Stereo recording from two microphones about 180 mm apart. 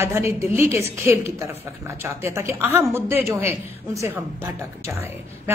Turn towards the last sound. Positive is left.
turn(degrees=-15)  # may be behind; listen again after turning